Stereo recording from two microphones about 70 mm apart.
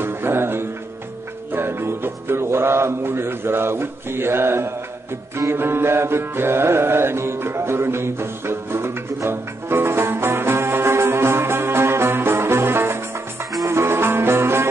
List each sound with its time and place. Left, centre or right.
0.0 s music: right